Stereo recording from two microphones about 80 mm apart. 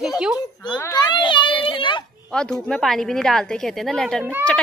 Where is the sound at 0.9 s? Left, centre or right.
Left.